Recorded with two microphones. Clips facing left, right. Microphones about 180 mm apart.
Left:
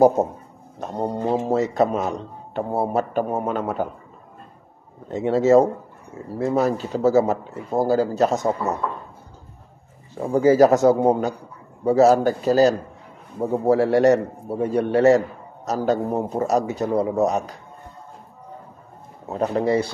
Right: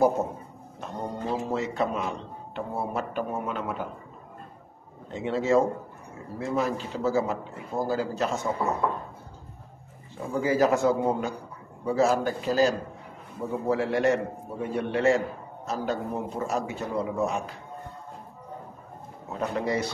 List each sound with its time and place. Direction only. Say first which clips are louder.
0.7 s a man's voice: left 8 dB; 40° left (ahead or behind)
5.1 s a man's voice: left 8 dB; 40° left (ahead or behind)
10.2 s a man's voice: left 9 dB; 40° left (ahead or behind)
19.2 s a man's voice: left 7 dB; 35° left (ahead or behind)